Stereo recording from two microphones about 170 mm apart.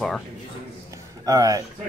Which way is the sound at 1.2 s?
20° right (ahead or behind).